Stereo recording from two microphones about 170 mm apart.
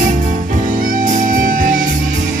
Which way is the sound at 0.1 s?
50° right (ahead or behind).